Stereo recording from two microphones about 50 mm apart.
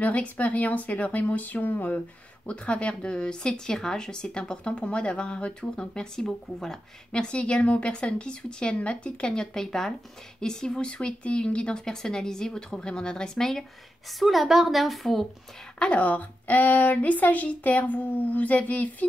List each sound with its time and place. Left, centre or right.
0.0 s a woman's voice: left
2.4 s speech: left; by 13.7 s centre
14.2 s a woman's voice: centre
15.8 s a woman's voice: left